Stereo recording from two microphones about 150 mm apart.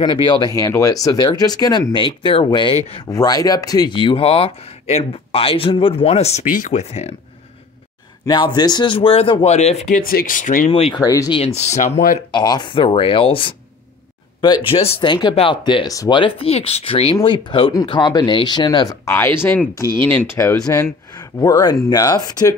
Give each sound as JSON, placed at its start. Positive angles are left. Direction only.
{"t": 0.0, "sound": "speech", "side_deg": 30}
{"t": 0.6, "sound": "speech", "side_deg": 20}
{"t": 3.1, "sound": "speech", "side_deg": 25}
{"t": 6.4, "sound": "speech", "side_deg": 60}
{"t": 8.3, "sound": "speech", "side_deg": 30}
{"t": 10.7, "sound": "speech", "side_deg": 40}
{"t": 11.0, "sound": "speech", "side_deg": 25}
{"t": 11.3, "sound": "speech", "side_deg": 45}
{"t": 12.3, "sound": "speech", "side_deg": 30}